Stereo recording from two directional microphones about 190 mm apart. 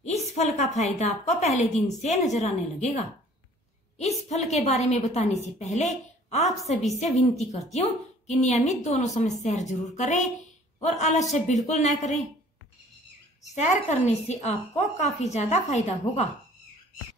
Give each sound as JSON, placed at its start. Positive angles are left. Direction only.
{"t": 0.0, "sound": "a woman's voice", "side_deg": 35}
{"t": 4.0, "sound": "a woman's voice", "side_deg": 35}
{"t": 13.6, "sound": "a woman's voice", "side_deg": 40}